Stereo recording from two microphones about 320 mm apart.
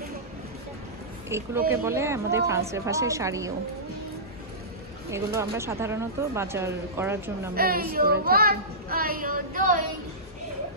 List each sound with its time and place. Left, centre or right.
1.3 s speech: centre
5.1 s speech: centre
7.5 s speech: right